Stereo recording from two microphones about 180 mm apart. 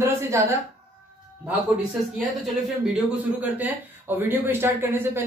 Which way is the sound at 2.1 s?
5° right (ahead or behind).